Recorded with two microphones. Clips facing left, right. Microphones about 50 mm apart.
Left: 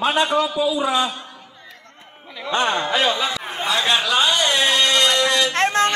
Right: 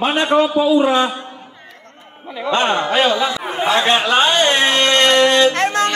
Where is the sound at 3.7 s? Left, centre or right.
Right.